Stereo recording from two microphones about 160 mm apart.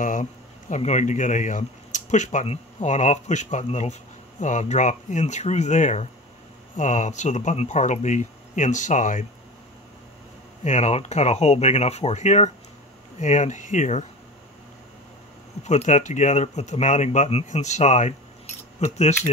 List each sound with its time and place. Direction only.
0.0 s speech: 55° left (ahead or behind)
10.6 s speech: 45° left (ahead or behind)
15.6 s speech: 45° left (ahead or behind)